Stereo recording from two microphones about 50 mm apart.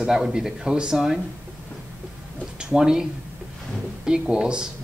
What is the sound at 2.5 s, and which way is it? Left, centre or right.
Speech, centre.